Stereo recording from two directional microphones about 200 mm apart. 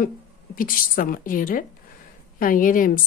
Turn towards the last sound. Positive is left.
turn(degrees=45)  # may be behind; listen again after turning